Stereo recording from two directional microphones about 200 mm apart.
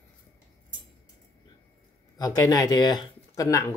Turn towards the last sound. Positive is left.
turn(degrees=15)  # may be behind; listen again after turning